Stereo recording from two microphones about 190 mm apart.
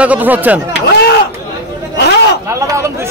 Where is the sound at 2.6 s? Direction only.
15° right (ahead or behind).